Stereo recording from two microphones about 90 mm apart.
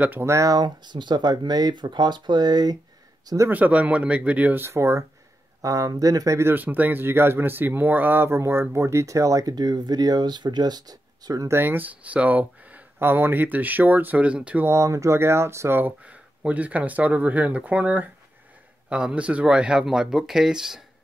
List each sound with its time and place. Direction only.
0.0 s speech: 20° right (ahead or behind)
0.3 s speech: 40° right (ahead or behind)
3.4 s speech: 20° right (ahead or behind); by 11.4 s 45° right (ahead or behind)
11.4 s speech: 25° right (ahead or behind)
14.7 s speech: 35° right (ahead or behind)
16.0 s speech: 15° right (ahead or behind)